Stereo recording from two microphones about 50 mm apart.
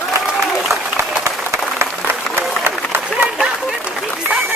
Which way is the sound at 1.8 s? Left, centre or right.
Right.